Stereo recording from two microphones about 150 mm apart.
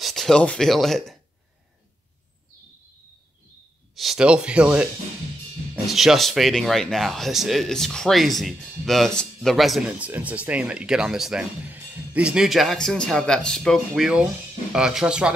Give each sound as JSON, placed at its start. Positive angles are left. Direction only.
{"t": 0.0, "sound": "speech", "side_deg": 0}
{"t": 3.9, "sound": "speech", "side_deg": 0}
{"t": 5.9, "sound": "speech", "side_deg": 0}